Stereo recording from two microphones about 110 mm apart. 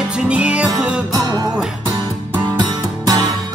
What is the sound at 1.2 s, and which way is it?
Music, 35° right (ahead or behind).